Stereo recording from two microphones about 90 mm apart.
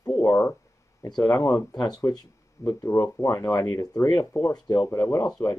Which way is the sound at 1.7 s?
45° left (ahead or behind).